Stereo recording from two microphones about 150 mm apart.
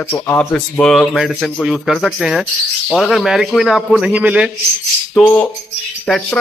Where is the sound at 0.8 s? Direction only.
Centre (ahead or behind).